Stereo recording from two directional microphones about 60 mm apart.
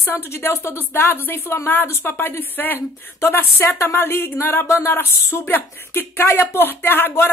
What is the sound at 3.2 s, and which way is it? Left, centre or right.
Speech, left.